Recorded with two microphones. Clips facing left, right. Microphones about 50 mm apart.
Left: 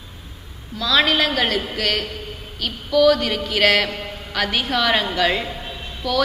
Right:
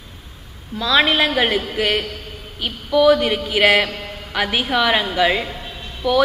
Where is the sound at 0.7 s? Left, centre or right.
Right.